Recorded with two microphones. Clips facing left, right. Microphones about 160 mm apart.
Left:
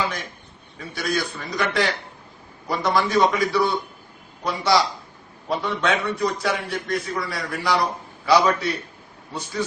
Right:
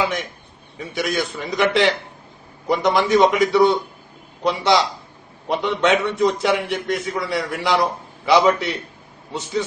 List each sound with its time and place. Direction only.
0.7 s a man's voice: 20° right (ahead or behind)